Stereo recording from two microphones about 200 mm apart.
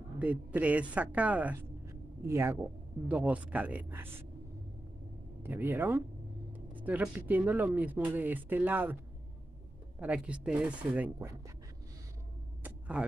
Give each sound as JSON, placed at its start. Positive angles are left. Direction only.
{"t": 0.2, "sound": "speech", "side_deg": -5}
{"t": 5.4, "sound": "speech", "side_deg": -10}
{"t": 9.9, "sound": "speech", "side_deg": -5}
{"t": 12.6, "sound": "a sound", "side_deg": -5}